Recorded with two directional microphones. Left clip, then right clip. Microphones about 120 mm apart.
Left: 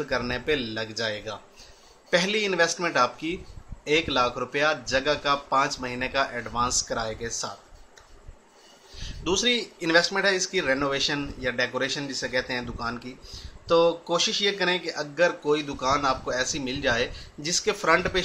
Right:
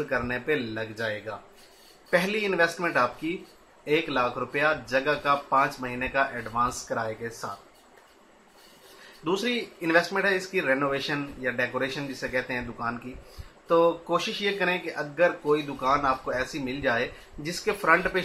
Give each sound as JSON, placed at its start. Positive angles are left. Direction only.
{"t": 0.1, "sound": "speech", "side_deg": 30}
{"t": 9.2, "sound": "speech", "side_deg": 30}